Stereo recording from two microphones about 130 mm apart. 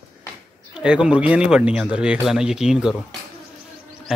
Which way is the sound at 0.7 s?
5° right (ahead or behind).